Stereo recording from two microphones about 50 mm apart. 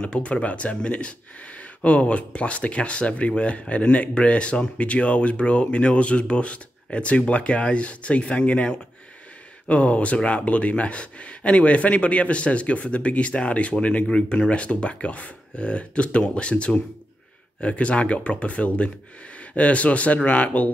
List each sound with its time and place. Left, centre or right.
0.0 s speech: left
14.0 s speech: centre; by 20.7 s left